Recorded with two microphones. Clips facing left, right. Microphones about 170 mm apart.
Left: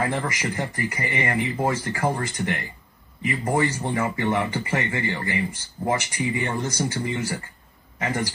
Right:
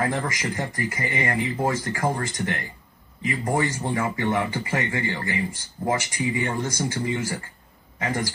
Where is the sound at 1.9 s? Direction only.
25° left (ahead or behind).